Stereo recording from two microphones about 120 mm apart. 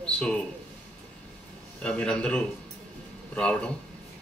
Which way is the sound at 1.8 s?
5° left (ahead or behind).